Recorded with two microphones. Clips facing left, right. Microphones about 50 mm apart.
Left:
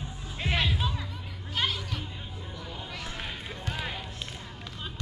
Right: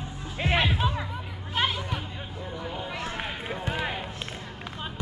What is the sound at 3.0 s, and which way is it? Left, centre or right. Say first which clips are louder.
Run: right 5 dB; right.